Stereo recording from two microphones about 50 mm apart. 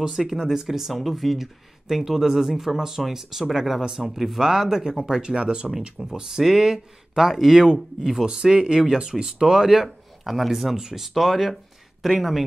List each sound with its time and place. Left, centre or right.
0.0 s speech: centre
0.3 s speech: centre